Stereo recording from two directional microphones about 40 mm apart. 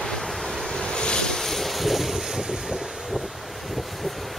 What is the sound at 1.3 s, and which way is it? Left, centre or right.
Vehicle, centre.